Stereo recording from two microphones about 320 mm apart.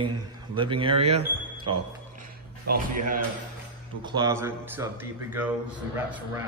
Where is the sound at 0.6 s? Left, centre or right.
Centre.